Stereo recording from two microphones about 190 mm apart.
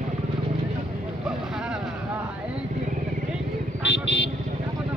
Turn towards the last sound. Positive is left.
turn(degrees=70)  # may be behind; listen again after turning